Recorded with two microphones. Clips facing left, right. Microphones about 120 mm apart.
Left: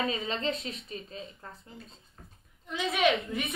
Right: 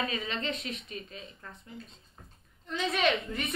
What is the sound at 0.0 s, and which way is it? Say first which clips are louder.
A woman's voice: left 3 dB; 30° left (ahead or behind).